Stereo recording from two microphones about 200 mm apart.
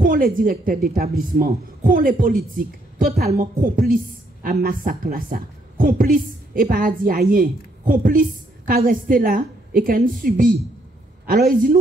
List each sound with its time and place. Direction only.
0.0 s a woman's voice: 45° right (ahead or behind)